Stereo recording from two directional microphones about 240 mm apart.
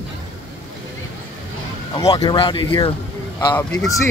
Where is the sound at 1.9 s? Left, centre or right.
Centre.